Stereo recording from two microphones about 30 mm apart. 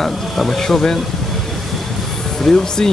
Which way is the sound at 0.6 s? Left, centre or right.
Centre.